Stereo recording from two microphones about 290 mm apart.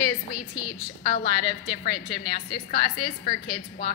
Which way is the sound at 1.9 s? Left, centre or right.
Centre.